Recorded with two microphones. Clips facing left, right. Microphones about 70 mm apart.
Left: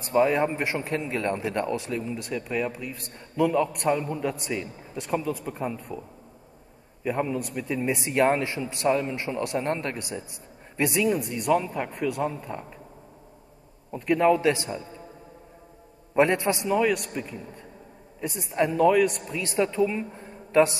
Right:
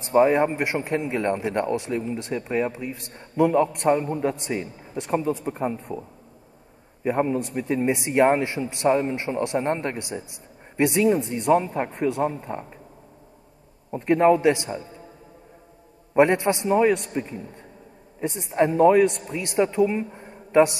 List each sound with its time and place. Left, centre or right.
0.1 s a man's voice: right
13.9 s a man's voice: right
16.2 s a man's voice: right